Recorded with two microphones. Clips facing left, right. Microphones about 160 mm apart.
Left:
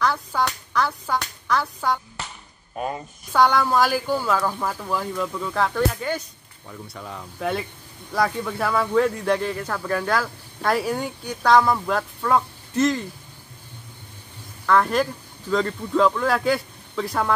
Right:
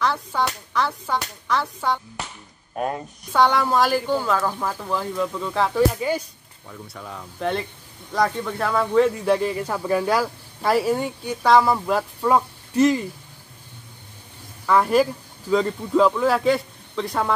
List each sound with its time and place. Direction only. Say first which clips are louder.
0.0 s a woman's voice: even; centre (ahead or behind)
6.7 s a woman's voice: even; centre (ahead or behind)
14.7 s a woman's voice: right 2 dB; 10° right (ahead or behind)